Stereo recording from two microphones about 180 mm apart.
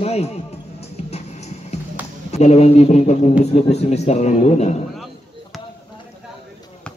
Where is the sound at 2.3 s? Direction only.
35° left (ahead or behind).